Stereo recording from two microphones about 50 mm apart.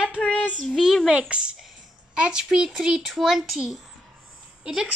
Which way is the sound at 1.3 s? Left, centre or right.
Right.